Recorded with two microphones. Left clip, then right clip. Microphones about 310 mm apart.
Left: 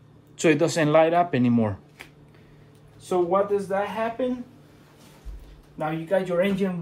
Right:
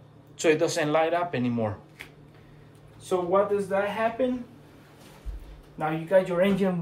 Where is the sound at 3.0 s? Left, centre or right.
Centre.